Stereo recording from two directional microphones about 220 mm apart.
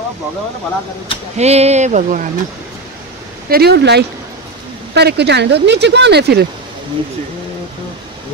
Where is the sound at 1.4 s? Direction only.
30° right (ahead or behind).